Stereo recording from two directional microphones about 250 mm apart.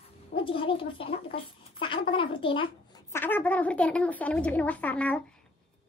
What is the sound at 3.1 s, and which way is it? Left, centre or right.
Speech, centre.